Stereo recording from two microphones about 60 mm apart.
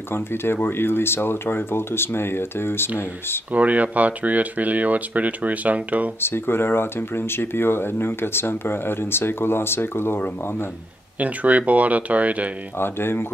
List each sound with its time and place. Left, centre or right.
0.1 s speech: left
3.5 s speech: right
6.2 s speech: left
11.1 s speech: right
12.7 s speech: left